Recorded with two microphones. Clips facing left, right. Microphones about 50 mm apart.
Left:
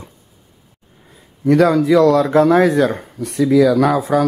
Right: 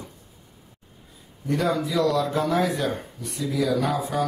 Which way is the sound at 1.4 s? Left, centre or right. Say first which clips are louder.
Left 12 dB; left.